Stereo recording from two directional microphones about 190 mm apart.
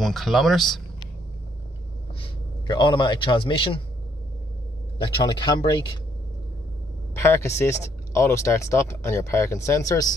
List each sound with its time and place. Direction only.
0.0 s speech: centre (ahead or behind)
2.1 s a man's voice: 25° left (ahead or behind)
5.0 s speech: 25° left (ahead or behind)
7.2 s speech: 15° left (ahead or behind)